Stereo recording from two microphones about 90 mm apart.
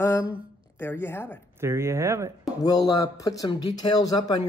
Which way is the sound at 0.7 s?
25° left (ahead or behind).